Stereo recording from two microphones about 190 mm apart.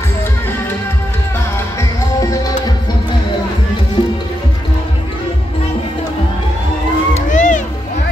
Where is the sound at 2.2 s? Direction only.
20° left (ahead or behind).